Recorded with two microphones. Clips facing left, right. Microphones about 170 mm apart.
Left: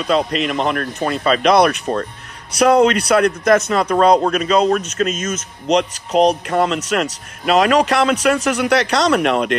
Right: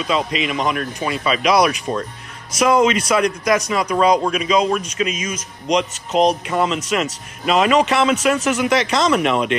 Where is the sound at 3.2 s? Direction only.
60° left (ahead or behind).